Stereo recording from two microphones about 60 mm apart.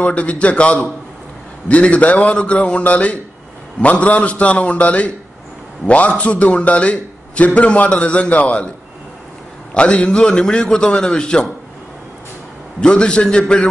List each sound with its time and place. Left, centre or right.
0.0 s a man's voice: left
9.8 s a man's voice: centre
12.8 s a man's voice: centre